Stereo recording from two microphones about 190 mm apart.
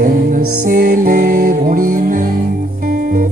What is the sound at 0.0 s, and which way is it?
Music, 45° right (ahead or behind).